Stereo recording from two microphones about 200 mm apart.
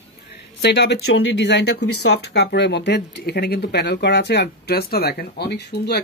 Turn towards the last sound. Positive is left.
turn(degrees=55)  # may be behind; listen again after turning